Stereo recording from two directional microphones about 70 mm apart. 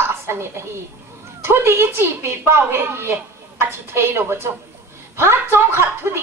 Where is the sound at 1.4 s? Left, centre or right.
Right.